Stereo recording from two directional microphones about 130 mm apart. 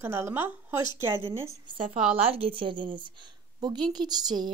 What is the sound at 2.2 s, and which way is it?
A woman's voice, 45° right (ahead or behind).